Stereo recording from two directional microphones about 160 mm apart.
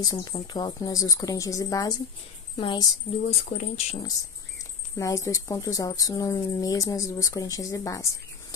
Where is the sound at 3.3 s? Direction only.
40° left (ahead or behind).